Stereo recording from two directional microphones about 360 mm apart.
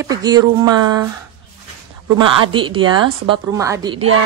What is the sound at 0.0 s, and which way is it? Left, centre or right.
A woman's voice, centre.